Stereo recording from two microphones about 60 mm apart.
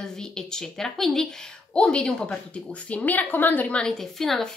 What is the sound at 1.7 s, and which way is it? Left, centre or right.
A woman's voice, centre.